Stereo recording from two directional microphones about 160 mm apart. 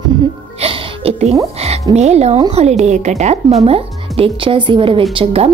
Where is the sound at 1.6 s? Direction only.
40° right (ahead or behind).